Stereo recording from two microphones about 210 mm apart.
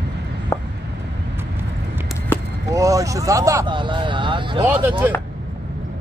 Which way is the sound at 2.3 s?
10° left (ahead or behind).